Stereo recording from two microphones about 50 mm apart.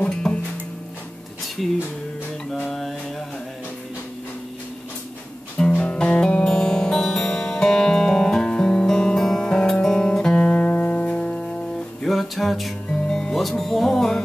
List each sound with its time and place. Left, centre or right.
0.0 s music: centre
2.7 s mantra: centre
5.6 s music: left
10.5 s music: left
12.0 s music: centre